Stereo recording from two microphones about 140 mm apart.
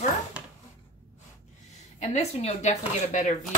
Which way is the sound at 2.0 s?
50° left (ahead or behind).